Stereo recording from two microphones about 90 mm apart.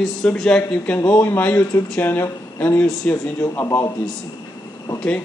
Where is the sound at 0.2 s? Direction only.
10° left (ahead or behind).